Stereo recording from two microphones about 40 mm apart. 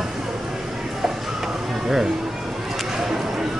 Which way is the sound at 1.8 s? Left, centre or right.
Centre.